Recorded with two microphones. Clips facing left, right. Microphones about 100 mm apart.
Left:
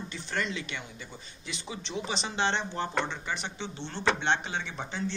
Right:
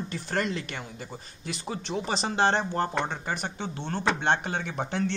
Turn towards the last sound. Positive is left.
turn(degrees=-60)  # may be behind; listen again after turning